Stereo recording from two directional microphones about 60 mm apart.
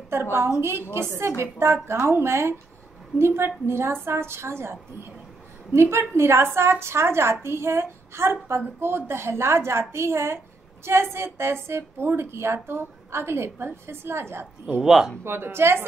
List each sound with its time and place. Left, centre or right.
0.1 s a woman's voice: right
14.8 s speech: centre
15.2 s a woman's voice: right